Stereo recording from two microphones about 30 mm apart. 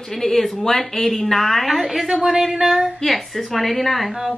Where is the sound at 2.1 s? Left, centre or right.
Centre.